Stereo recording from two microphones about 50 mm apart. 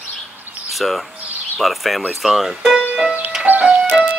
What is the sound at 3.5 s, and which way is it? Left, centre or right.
Music, right.